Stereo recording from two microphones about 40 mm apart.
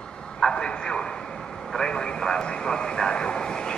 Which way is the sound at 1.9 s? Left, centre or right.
Left.